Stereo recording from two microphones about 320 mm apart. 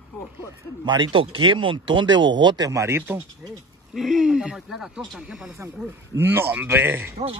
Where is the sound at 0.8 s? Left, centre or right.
Centre.